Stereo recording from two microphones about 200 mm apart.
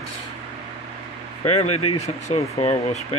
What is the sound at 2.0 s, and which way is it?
Speech, 35° left (ahead or behind).